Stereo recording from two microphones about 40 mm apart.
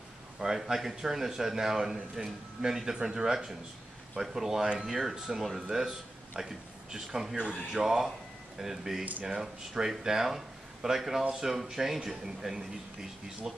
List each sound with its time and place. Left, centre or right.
0.4 s speech: right
0.7 s a man's voice: centre